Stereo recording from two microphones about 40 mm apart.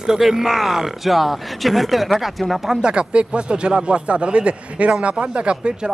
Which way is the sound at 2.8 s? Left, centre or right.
Right.